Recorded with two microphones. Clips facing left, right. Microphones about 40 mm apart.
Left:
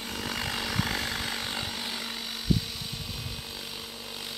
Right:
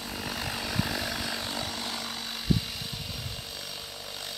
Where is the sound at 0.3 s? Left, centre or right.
Left.